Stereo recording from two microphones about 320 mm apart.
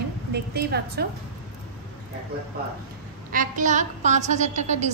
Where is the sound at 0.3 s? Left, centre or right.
Right.